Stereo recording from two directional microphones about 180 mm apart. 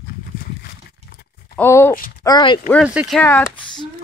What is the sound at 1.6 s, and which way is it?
Speech, 15° left (ahead or behind).